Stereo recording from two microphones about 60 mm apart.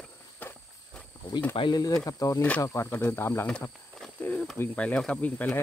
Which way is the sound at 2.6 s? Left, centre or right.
Left.